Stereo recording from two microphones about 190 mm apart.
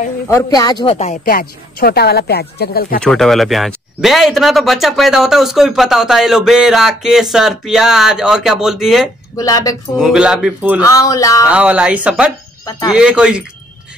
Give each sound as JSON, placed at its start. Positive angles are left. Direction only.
{"t": 0.3, "sound": "speech", "side_deg": 15}
{"t": 1.2, "sound": "speech", "side_deg": 50}
{"t": 3.0, "sound": "speech", "side_deg": 0}
{"t": 9.4, "sound": "speech", "side_deg": 20}
{"t": 9.9, "sound": "speech", "side_deg": -5}
{"t": 10.8, "sound": "speech", "side_deg": 15}
{"t": 11.4, "sound": "speech", "side_deg": -5}